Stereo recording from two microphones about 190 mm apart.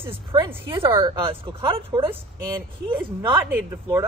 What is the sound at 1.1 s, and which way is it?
Speech, 25° right (ahead or behind).